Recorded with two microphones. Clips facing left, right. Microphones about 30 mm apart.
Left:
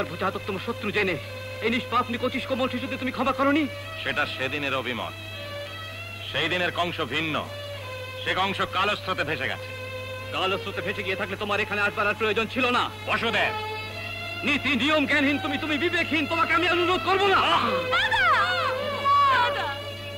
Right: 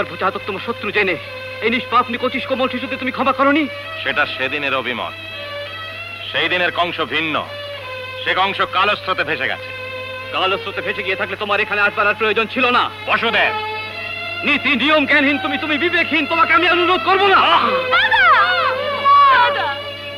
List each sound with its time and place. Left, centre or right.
0.0 s speech: right
6.3 s a man's voice: right